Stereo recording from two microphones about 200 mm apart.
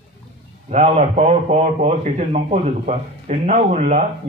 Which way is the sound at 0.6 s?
35° right (ahead or behind).